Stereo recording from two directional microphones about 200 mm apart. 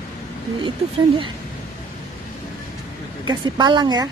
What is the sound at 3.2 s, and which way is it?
Speech, 20° right (ahead or behind).